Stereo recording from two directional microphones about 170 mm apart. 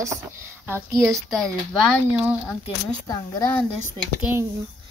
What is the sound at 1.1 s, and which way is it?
Speech, 5° left (ahead or behind).